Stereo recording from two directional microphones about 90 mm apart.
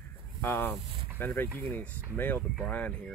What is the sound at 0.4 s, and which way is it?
Speech, 25° left (ahead or behind).